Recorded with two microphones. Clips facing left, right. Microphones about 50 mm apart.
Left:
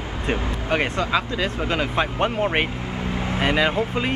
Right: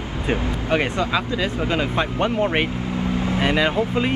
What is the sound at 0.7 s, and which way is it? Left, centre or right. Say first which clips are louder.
Speech: right 1 dB; centre.